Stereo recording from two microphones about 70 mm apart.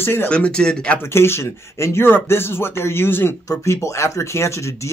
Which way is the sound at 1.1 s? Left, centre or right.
Left.